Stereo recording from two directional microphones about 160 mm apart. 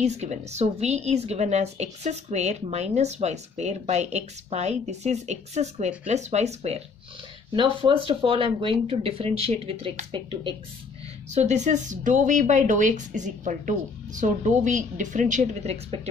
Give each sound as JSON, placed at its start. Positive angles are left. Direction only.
{"t": 0.0, "sound": "a woman's voice", "side_deg": -45}
{"t": 7.5, "sound": "speech", "side_deg": -30}
{"t": 11.2, "sound": "a woman's voice", "side_deg": -45}